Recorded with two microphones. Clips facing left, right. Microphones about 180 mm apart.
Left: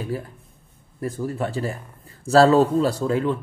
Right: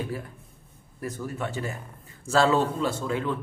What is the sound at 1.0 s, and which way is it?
A man's voice, 30° left (ahead or behind).